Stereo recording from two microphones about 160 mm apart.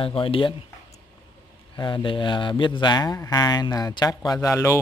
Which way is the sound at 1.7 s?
25° left (ahead or behind).